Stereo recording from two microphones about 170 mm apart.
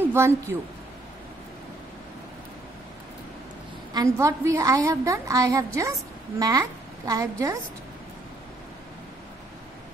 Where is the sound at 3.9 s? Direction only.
20° right (ahead or behind).